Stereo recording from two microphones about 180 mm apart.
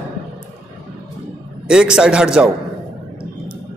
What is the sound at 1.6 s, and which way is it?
Speech, 5° right (ahead or behind).